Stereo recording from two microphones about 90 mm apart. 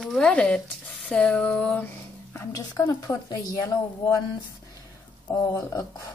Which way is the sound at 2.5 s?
30° left (ahead or behind).